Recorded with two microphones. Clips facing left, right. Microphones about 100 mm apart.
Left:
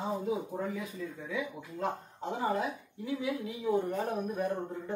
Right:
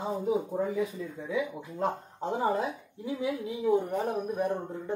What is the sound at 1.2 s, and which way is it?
Speech, 20° right (ahead or behind).